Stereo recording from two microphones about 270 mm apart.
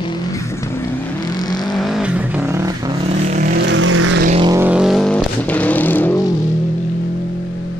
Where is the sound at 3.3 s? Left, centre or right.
Right.